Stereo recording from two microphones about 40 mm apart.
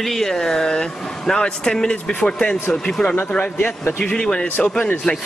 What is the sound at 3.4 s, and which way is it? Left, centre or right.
Speech, left.